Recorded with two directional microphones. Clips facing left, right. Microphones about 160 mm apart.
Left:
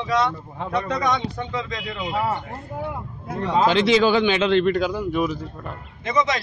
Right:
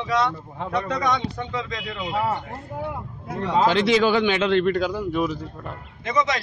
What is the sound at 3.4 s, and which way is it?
Speech, 20° left (ahead or behind).